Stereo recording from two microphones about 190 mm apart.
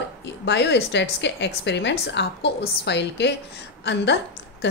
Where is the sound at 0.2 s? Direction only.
65° left (ahead or behind).